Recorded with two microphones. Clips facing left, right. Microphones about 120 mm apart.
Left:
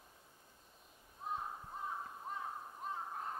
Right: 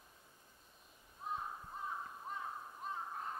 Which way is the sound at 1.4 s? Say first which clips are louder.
Left 1 dB; 30° left (ahead or behind).